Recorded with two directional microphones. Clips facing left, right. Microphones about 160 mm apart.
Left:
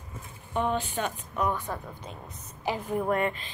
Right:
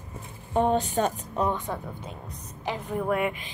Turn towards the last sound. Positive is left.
turn(degrees=-10)  # may be behind; listen again after turning